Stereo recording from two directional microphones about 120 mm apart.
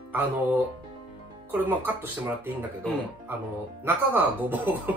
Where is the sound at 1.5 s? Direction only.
15° right (ahead or behind).